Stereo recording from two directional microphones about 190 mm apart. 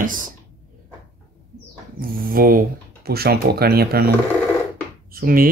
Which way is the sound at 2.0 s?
50° right (ahead or behind).